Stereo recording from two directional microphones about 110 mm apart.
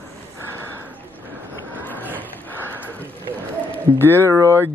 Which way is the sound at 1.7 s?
15° left (ahead or behind).